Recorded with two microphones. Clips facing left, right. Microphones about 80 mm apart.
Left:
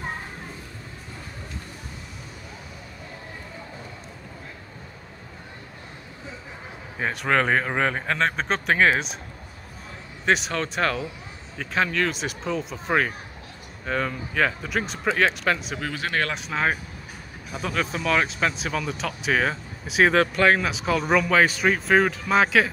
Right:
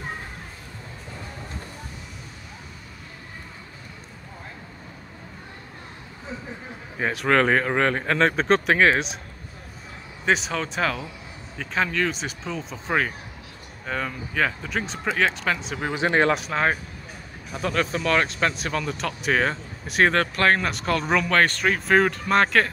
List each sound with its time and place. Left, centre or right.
7.0 s speech: centre
10.2 s speech: centre
15.8 s speech: right
16.3 s speech: centre